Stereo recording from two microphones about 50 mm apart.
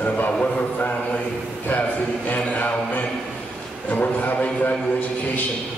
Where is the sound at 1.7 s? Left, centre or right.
Left.